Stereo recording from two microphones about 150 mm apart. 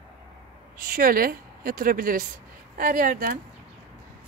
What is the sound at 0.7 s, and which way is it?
Speech, 70° right (ahead or behind).